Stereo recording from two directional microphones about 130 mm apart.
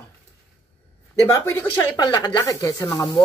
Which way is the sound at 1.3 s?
25° left (ahead or behind).